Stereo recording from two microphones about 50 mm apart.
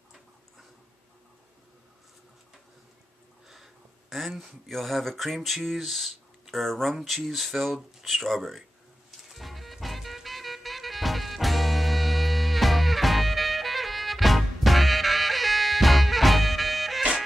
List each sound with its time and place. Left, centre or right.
3.4 s a sound: centre
4.4 s speech: centre
9.3 s music: centre